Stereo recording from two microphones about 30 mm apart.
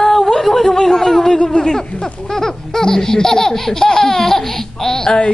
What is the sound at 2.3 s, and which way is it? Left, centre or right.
Laughter, centre.